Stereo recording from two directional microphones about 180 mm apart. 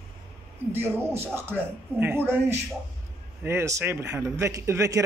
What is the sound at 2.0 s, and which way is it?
A man's voice, 10° right (ahead or behind).